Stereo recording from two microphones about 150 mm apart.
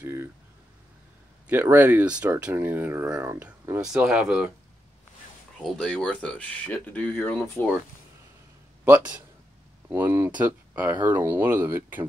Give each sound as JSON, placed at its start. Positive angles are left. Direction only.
{"t": 0.0, "sound": "a sound", "side_deg": -15}
{"t": 1.5, "sound": "speech", "side_deg": -15}
{"t": 5.6, "sound": "speech", "side_deg": 0}
{"t": 8.8, "sound": "speech", "side_deg": -10}